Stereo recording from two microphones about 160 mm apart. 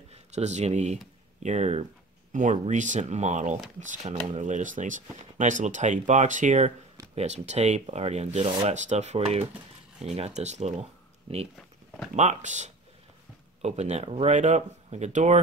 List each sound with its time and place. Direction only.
0.1 s speech: 45° right (ahead or behind)
12.2 s speech: 45° right (ahead or behind)